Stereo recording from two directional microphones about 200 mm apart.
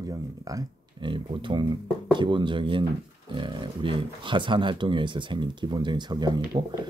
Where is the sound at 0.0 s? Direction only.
15° right (ahead or behind).